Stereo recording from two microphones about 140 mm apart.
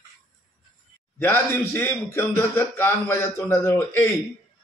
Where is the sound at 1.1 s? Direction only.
15° left (ahead or behind).